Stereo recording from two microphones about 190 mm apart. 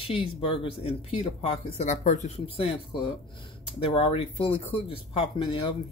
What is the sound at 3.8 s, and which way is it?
Speech, 30° left (ahead or behind).